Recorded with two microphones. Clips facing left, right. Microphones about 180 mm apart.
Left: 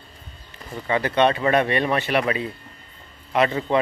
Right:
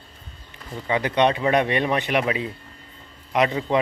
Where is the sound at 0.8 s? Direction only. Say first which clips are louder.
Left 1 dB; 15° right (ahead or behind).